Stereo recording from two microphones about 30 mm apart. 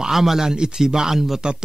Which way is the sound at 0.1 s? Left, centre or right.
Centre.